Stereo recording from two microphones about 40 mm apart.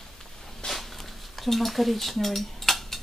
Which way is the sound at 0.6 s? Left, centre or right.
Left.